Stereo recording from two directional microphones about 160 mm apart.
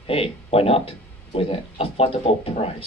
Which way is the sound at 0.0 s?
35° left (ahead or behind).